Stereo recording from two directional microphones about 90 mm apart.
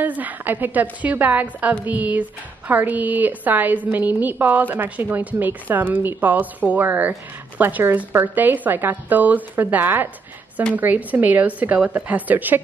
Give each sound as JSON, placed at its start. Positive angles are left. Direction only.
{"t": 0.0, "sound": "a woman's voice", "side_deg": -20}